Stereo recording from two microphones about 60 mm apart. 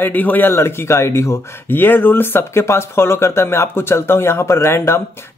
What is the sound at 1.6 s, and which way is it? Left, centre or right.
Speech, left.